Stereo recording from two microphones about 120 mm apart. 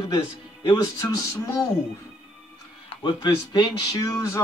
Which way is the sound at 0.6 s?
30° left (ahead or behind).